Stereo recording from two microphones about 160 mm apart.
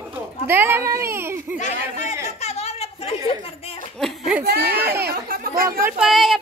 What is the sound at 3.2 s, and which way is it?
Speech, 35° left (ahead or behind).